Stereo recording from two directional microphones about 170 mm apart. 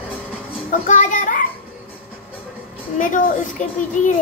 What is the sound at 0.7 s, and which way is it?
Speech, 45° left (ahead or behind).